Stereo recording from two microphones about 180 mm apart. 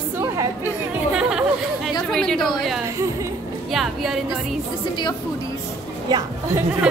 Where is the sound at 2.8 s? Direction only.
15° right (ahead or behind).